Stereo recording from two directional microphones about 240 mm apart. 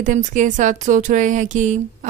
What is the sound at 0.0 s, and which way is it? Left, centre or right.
Speech, right.